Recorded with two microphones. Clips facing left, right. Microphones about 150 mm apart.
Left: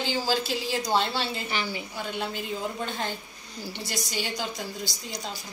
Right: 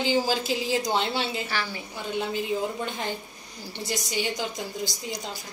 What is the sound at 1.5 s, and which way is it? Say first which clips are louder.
Speech: even; 15° left (ahead or behind).